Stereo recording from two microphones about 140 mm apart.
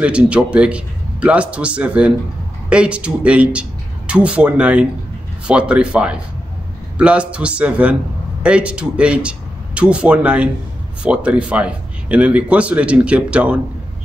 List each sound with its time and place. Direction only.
0.0 s a man's voice: 10° right (ahead or behind)